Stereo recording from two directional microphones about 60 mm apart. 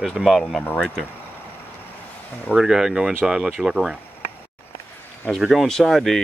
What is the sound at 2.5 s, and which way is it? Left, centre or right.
Speech, centre.